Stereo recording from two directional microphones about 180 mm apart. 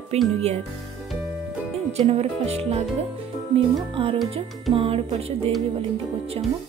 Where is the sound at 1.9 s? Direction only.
35° right (ahead or behind).